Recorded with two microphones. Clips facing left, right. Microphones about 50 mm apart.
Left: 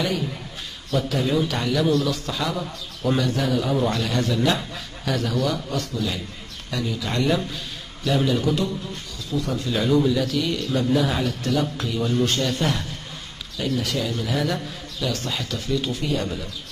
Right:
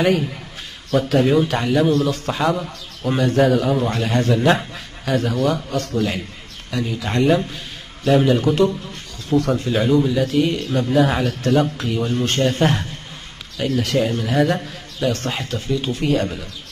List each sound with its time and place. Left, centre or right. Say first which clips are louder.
0.9 s a man's voice: right 6 dB; right
5.7 s a man's voice: right 5 dB; right
6.7 s a man's voice: right 4 dB; right
7.5 s a sound: right 1 dB; right
8.5 s a man's voice: right 6 dB; right
9.7 s a man's voice: left 1 dB; right
16.0 s a man's voice: right 6 dB; right